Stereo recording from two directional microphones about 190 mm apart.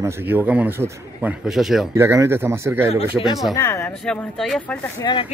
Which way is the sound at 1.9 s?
15° right (ahead or behind).